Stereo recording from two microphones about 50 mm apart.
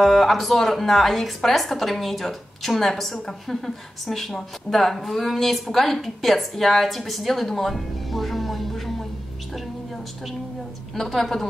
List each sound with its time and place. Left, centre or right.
0.0 s a woman's voice: centre
11.0 s a woman's voice: centre